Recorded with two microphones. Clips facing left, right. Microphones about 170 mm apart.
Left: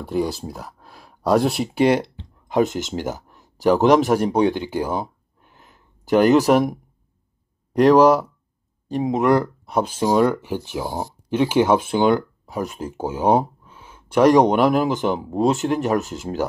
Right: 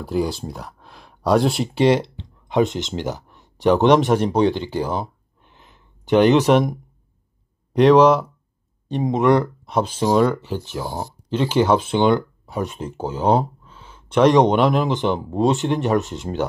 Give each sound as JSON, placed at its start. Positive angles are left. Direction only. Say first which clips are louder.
{"t": 0.0, "sound": "speech", "louder": "even", "side_deg": 0}